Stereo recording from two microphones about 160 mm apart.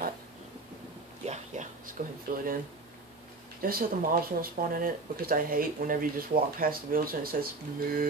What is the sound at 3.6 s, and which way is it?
Speech, 65° right (ahead or behind).